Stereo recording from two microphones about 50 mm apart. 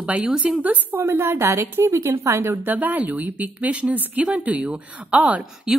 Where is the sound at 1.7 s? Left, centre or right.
Right.